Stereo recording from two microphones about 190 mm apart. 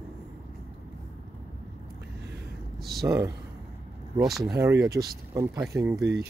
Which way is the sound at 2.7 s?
Centre (ahead or behind).